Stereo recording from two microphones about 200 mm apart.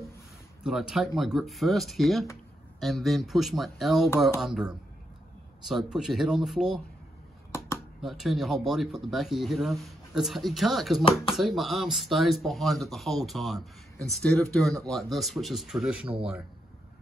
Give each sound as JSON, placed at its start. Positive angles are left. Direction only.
{"t": 0.7, "sound": "speech", "side_deg": 0}
{"t": 8.0, "sound": "speech", "side_deg": 0}